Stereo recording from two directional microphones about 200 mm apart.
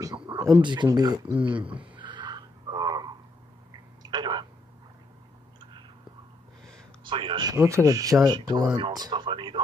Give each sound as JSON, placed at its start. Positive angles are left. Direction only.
{"t": 0.0, "sound": "speech", "side_deg": -20}
{"t": 2.0, "sound": "a sound", "side_deg": -20}
{"t": 5.6, "sound": "chewing", "side_deg": -25}
{"t": 7.1, "sound": "speech", "side_deg": -25}